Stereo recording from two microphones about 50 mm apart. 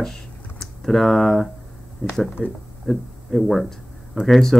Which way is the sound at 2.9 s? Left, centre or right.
Centre.